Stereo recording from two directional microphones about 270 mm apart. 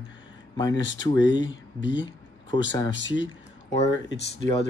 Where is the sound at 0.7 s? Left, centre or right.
Left.